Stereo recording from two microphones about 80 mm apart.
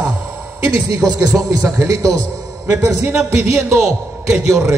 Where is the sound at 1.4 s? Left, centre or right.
Right.